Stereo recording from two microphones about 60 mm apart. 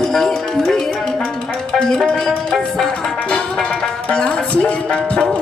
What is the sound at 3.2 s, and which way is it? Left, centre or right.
Music, centre.